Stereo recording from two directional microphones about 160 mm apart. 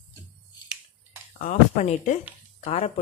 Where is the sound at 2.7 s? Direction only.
35° left (ahead or behind).